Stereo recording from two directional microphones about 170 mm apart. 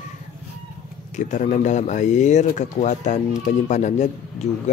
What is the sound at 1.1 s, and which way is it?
Speech, 45° left (ahead or behind).